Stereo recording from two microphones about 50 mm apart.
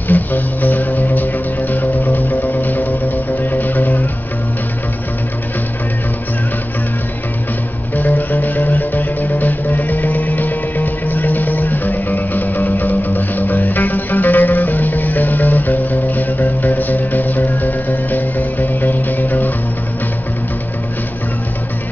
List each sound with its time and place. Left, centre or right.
0.1 s music: left
7.9 s music: left